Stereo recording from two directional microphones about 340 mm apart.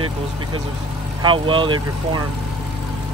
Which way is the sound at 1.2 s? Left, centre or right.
Centre.